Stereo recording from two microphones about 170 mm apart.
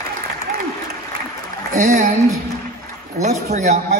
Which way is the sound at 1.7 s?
45° right (ahead or behind).